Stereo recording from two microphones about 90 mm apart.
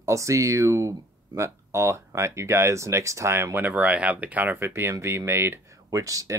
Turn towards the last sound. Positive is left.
turn(degrees=-40)  # may be behind; listen again after turning